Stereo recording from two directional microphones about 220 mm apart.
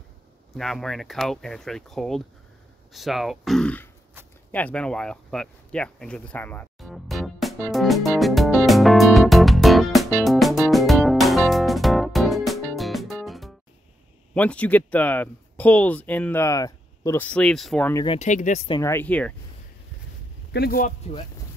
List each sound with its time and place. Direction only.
0.6 s speech: centre (ahead or behind)
4.5 s a sound: 5° left (ahead or behind)
14.3 s speech: 5° left (ahead or behind)
18.0 s speech: 30° left (ahead or behind)
18.7 s speech: 15° left (ahead or behind)
20.5 s speech: 45° left (ahead or behind)